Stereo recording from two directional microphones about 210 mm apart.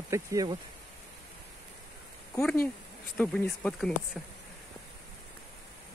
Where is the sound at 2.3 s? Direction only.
Centre (ahead or behind).